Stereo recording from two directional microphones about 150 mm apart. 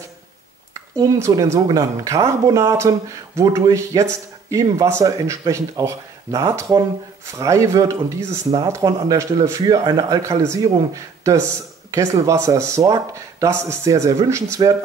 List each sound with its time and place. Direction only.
0.9 s speech: 25° right (ahead or behind)